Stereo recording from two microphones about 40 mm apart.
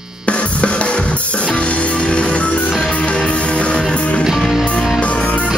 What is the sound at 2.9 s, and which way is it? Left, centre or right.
Music, left.